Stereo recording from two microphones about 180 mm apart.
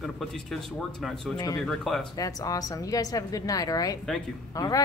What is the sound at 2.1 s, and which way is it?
A woman's voice, 20° left (ahead or behind).